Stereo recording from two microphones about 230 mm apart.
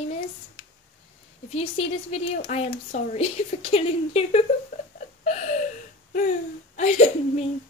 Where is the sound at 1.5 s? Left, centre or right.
Left.